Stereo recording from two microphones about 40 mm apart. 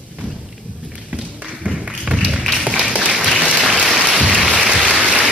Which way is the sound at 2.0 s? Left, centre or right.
Centre.